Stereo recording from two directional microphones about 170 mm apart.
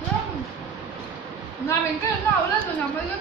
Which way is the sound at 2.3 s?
10° left (ahead or behind).